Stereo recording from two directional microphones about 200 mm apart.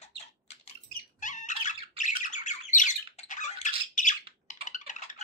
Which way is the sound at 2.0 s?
40° left (ahead or behind).